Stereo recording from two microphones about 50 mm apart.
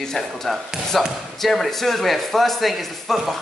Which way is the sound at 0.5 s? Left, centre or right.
Centre.